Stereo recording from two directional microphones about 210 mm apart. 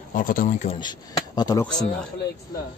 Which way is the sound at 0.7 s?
20° left (ahead or behind).